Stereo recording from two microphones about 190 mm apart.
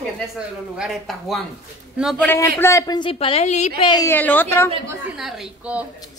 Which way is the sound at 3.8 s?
25° left (ahead or behind).